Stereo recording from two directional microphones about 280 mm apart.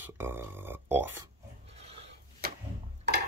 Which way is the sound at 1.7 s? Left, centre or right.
Right.